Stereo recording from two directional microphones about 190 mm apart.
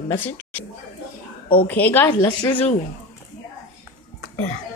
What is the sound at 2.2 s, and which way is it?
Speech, 25° left (ahead or behind).